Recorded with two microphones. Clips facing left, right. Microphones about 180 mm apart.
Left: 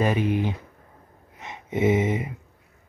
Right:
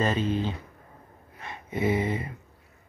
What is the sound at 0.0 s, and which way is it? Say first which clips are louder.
Speech: left 3 dB; 15° left (ahead or behind).